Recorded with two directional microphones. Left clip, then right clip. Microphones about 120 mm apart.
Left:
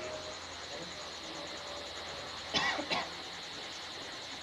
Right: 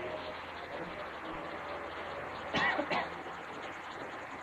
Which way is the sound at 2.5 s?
30° left (ahead or behind).